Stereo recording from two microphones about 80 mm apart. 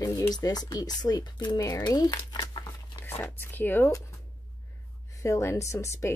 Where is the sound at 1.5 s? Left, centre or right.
Left.